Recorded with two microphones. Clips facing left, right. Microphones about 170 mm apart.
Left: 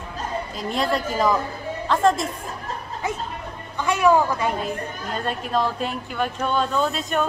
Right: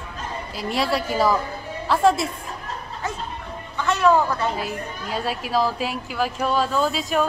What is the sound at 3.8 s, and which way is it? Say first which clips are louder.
Speech: even; 15° left (ahead or behind).